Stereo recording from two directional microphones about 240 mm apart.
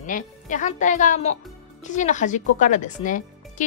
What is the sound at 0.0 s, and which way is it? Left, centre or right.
Speech, left.